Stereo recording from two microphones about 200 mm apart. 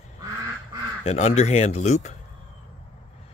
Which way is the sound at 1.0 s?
35° left (ahead or behind).